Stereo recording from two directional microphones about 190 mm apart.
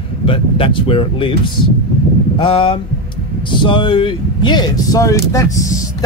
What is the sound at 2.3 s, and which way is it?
Speech, 25° left (ahead or behind).